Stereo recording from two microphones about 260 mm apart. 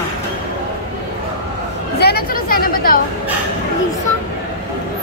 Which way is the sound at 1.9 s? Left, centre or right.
Left.